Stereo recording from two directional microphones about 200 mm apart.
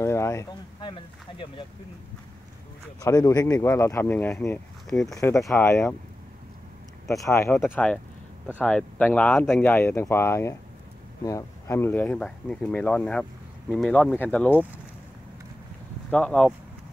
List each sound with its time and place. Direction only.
0.0 s a sound: 15° left (ahead or behind)
3.0 s speech: 15° left (ahead or behind)
4.8 s speech: centre (ahead or behind)
7.1 s speech: 15° left (ahead or behind)
16.1 s speech: 5° left (ahead or behind)